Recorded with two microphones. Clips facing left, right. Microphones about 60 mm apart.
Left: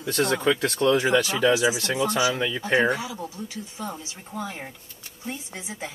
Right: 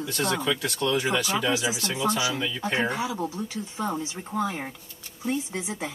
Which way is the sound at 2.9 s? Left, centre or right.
Right.